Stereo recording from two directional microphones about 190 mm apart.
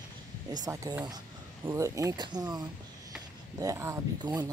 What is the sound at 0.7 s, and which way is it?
Speech, 15° right (ahead or behind).